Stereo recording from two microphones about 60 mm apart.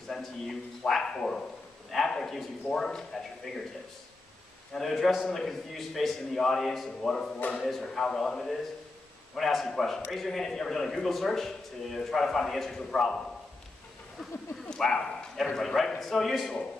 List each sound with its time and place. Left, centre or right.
0.1 s a man's voice: centre
4.7 s speech: centre
14.8 s speech: centre